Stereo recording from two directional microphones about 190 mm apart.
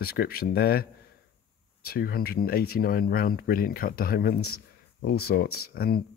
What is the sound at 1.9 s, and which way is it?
Speech, 50° left (ahead or behind).